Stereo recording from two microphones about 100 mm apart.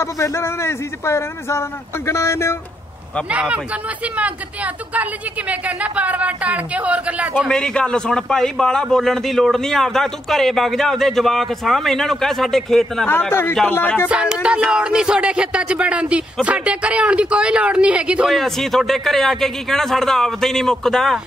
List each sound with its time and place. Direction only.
0.0 s speech: 30° left (ahead or behind)
3.3 s a man's voice: 10° right (ahead or behind)
5.5 s a man's voice: 15° right (ahead or behind)
7.4 s a man's voice: 5° left (ahead or behind)
13.0 s speech: 20° left (ahead or behind)
14.0 s a man's voice: 10° right (ahead or behind)
18.3 s a man's voice: centre (ahead or behind)